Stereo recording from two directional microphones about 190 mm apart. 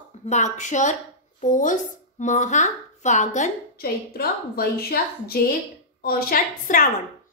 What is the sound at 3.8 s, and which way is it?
A woman's voice, 55° left (ahead or behind).